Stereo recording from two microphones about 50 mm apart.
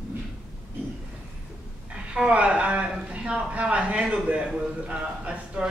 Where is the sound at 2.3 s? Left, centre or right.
Right.